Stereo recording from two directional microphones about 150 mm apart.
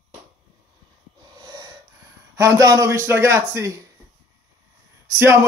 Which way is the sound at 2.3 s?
20° right (ahead or behind).